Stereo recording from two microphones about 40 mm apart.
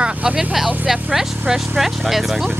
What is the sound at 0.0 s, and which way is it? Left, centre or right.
Speech, right.